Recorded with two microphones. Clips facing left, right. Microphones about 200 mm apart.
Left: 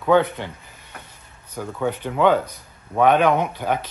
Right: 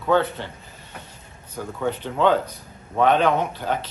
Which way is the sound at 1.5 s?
10° left (ahead or behind).